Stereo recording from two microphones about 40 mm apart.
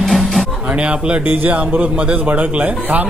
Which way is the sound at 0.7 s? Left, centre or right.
Right.